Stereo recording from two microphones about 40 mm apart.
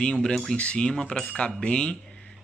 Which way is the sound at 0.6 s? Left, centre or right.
Left.